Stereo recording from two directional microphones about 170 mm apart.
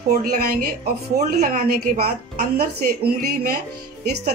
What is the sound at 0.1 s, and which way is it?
Speech, 45° right (ahead or behind).